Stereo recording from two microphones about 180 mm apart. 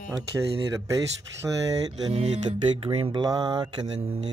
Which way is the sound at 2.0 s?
30° right (ahead or behind).